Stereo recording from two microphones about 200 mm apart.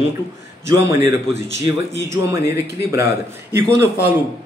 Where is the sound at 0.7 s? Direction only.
15° right (ahead or behind).